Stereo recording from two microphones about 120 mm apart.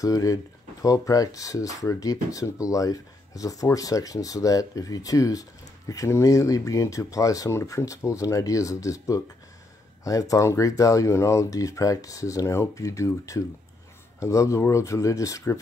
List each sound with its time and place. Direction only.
0.0 s speech: 30° left (ahead or behind)